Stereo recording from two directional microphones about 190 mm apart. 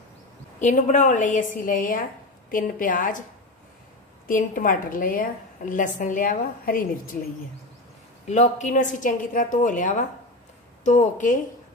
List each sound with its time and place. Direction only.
0.6 s a woman's voice: 40° left (ahead or behind)
4.3 s a woman's voice: 45° left (ahead or behind)
8.3 s a woman's voice: 40° left (ahead or behind)